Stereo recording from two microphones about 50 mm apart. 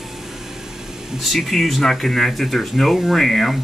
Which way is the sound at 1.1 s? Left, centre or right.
Centre.